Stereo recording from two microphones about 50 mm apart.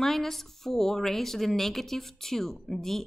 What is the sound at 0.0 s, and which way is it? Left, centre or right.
A woman's voice, centre.